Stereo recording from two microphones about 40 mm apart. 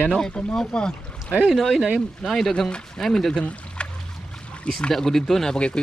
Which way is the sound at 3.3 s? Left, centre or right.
Left.